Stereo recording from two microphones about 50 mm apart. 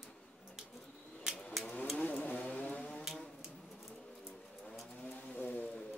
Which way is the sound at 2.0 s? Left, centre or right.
Left.